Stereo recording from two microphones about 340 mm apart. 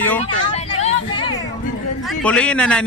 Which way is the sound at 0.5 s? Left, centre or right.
Centre.